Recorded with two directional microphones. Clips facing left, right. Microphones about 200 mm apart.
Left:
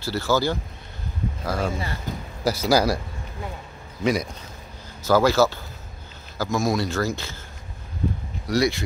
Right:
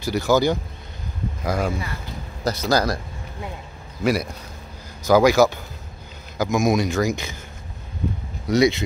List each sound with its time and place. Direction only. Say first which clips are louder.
0.0 s a man's voice: right 4 dB; 15° right (ahead or behind)
2.1 s speech: left 3 dB; 45° left (ahead or behind)
2.4 s speech: left 1 dB; 5° left (ahead or behind)
4.0 s a man's voice: right 1 dB; 5° right (ahead or behind)
8.5 s speech: right 4 dB; 20° right (ahead or behind)